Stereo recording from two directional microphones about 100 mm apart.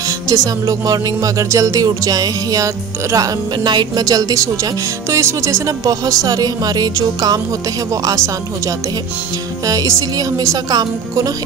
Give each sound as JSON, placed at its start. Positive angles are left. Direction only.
{"t": 0.0, "sound": "music", "side_deg": -35}